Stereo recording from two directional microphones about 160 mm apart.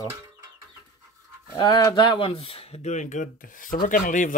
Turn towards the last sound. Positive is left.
turn(degrees=55)  # may be behind; listen again after turning